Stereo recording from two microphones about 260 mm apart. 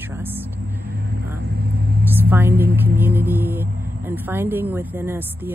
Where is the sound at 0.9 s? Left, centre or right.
Right.